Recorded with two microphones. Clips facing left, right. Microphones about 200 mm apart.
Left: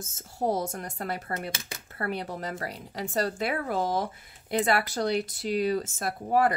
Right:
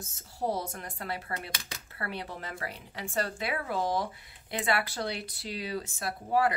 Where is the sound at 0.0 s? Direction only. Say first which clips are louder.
Left 4 dB; 45° left (ahead or behind).